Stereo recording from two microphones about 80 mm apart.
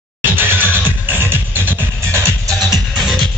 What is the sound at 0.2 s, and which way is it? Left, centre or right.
Music, right.